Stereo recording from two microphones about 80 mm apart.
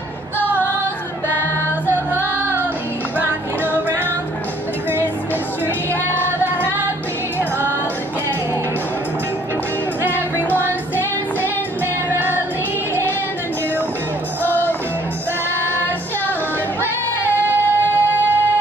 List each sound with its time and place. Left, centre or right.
0.5 s music: left
2.1 s music: right
10.0 s music: right
10.5 s music: left
14.4 s music: left
15.6 s female singing: left
17.5 s music: right